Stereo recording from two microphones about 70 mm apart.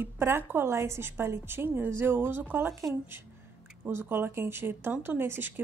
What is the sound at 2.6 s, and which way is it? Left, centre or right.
Speech, right.